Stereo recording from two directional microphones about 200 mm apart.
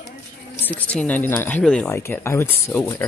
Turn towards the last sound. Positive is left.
turn(degrees=10)  # may be behind; listen again after turning